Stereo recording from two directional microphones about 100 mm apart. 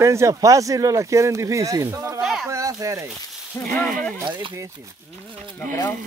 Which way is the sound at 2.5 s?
35° right (ahead or behind).